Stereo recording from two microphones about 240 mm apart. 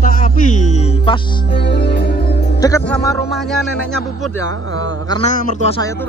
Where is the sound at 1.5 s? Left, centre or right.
Left.